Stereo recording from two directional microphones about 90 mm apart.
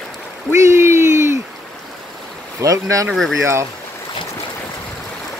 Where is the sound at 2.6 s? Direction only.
40° right (ahead or behind).